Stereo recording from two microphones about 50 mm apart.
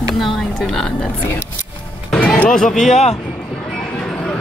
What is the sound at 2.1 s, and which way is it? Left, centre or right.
Music, left.